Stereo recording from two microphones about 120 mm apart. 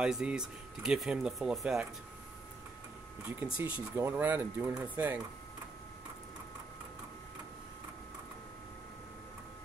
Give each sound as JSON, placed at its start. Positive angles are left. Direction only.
{"t": 0.0, "sound": "speech", "side_deg": -5}
{"t": 3.5, "sound": "speech", "side_deg": -10}